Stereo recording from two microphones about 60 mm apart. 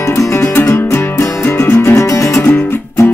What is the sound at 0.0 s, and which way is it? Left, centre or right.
Music, left.